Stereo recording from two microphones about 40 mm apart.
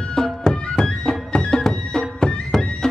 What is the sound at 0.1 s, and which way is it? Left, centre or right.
Music, centre.